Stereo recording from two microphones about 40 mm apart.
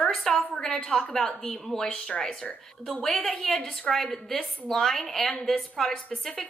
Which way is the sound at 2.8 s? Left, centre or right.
Centre.